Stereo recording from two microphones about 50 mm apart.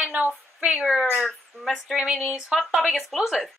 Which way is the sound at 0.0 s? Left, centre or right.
Right.